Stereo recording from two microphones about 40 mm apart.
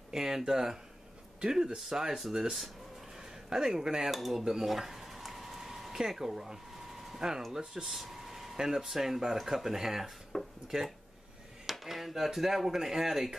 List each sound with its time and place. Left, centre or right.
0.1 s speech: centre
3.4 s speech: centre
4.1 s a sound: centre
7.2 s speech: centre